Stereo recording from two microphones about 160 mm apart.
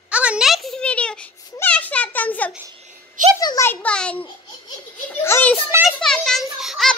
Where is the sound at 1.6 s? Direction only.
10° left (ahead or behind).